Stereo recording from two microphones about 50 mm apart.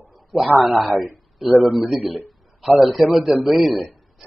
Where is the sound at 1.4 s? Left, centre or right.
Right.